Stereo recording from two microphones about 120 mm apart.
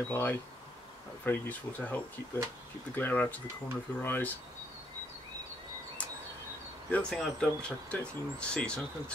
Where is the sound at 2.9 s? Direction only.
15° left (ahead or behind).